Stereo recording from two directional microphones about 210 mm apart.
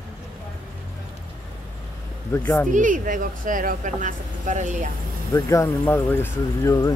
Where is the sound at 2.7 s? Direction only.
40° right (ahead or behind).